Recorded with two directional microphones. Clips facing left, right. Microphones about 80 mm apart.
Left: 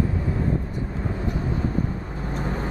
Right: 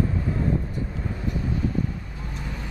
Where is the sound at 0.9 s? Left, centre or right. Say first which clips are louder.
Left 4 dB; left.